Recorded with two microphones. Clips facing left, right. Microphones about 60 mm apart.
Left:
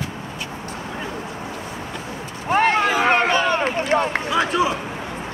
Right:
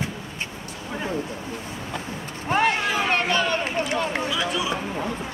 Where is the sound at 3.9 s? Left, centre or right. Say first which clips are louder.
Left 5 dB; left.